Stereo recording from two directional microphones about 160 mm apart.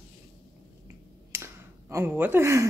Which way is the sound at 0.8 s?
15° right (ahead or behind).